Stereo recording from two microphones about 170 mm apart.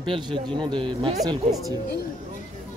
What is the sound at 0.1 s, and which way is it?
Speech, 30° right (ahead or behind).